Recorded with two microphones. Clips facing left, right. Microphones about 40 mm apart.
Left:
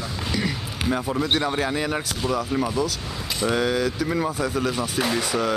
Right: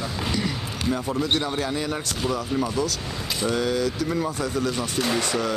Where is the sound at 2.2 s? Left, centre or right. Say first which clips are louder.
Even; centre.